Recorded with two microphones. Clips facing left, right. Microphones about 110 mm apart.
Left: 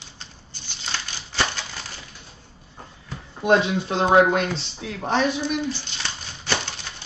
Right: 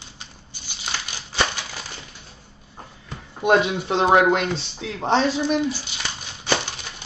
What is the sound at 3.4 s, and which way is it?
Speech, 15° right (ahead or behind).